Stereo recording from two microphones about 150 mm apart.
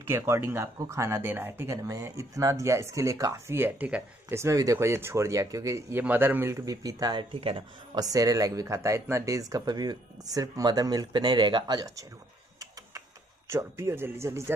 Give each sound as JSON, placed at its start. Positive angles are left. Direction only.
{"t": 0.0, "sound": "speech", "side_deg": -15}
{"t": 13.5, "sound": "speech", "side_deg": -15}